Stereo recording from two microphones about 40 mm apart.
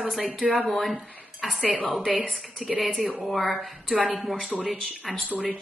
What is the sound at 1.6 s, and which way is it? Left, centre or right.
Speech, right.